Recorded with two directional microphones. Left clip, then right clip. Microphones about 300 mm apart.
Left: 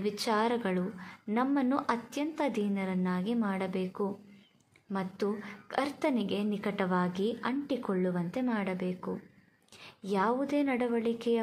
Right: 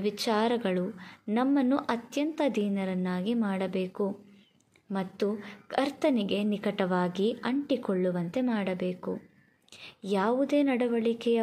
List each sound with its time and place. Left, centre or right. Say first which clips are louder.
0.0 s a woman's voice: right 2 dB; centre